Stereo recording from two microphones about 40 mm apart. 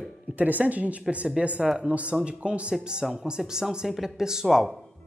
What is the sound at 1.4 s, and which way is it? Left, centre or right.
Speech, right.